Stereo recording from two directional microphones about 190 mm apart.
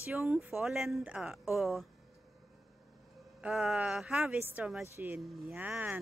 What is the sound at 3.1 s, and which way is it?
Speech, centre (ahead or behind).